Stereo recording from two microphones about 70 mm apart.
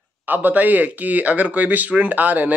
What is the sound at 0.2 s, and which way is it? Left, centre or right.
Speech, right.